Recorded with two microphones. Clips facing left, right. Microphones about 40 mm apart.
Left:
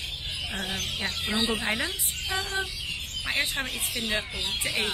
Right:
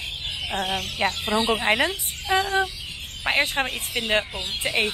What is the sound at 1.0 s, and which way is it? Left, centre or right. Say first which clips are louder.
Speech: right 6 dB; right.